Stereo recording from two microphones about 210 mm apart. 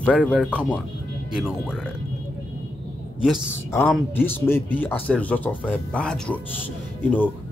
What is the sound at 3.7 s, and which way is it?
A man's voice, 10° left (ahead or behind).